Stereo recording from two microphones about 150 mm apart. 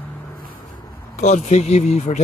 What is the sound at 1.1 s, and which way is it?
Speech, 50° left (ahead or behind).